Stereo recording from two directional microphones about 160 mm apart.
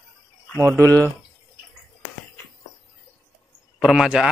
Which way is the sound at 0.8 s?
20° right (ahead or behind).